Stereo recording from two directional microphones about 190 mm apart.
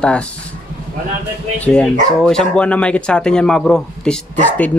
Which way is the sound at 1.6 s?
5° left (ahead or behind).